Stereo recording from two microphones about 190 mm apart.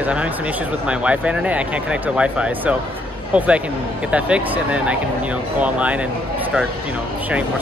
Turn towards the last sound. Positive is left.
turn(degrees=-5)  # may be behind; listen again after turning